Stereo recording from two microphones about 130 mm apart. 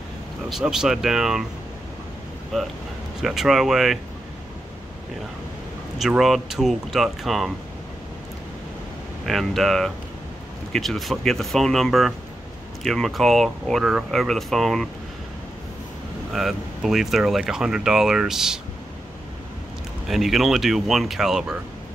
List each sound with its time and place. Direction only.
0.5 s speech: 5° right (ahead or behind)
2.5 s speech: centre (ahead or behind)
5.9 s speech: centre (ahead or behind)
9.2 s speech: centre (ahead or behind)
16.3 s speech: centre (ahead or behind)
20.1 s speech: centre (ahead or behind)